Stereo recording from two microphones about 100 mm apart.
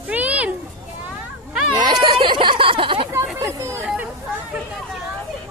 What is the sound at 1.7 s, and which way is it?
A child's voice, 45° right (ahead or behind).